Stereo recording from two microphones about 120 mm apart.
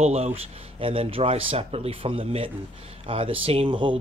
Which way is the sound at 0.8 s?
50° right (ahead or behind).